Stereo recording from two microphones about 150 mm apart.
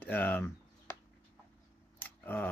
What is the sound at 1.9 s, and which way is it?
Tick, 15° left (ahead or behind).